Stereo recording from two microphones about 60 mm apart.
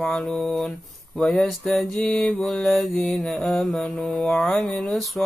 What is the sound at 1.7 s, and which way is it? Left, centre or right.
Mantra, centre.